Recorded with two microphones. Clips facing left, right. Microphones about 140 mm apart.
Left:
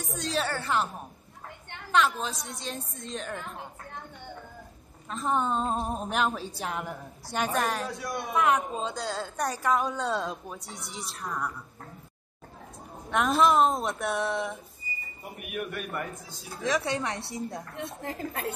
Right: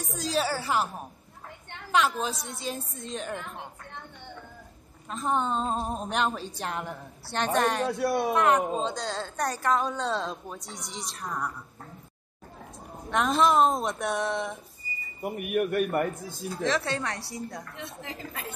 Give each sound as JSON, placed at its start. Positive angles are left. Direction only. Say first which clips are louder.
{"t": 0.0, "sound": "a sound", "louder": "right 2 dB", "side_deg": 0}
{"t": 1.9, "sound": "a woman's voice", "louder": "even", "side_deg": 0}
{"t": 5.1, "sound": "a woman's voice", "louder": "even", "side_deg": 0}
{"t": 8.0, "sound": "speech", "louder": "right 8 dB", "side_deg": -65}
{"t": 8.3, "sound": "a woman's voice", "louder": "left 1 dB", "side_deg": 0}
{"t": 13.1, "sound": "a woman's voice", "louder": "even", "side_deg": 5}
{"t": 15.2, "sound": "a man's voice", "louder": "right 9 dB", "side_deg": -55}
{"t": 16.6, "sound": "speech", "louder": "even", "side_deg": 15}
{"t": 17.7, "sound": "a woman's voice", "louder": "left 4 dB", "side_deg": 50}